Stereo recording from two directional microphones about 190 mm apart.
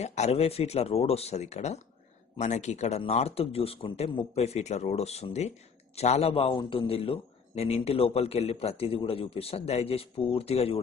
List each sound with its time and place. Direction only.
0.0 s a man's voice: 35° left (ahead or behind)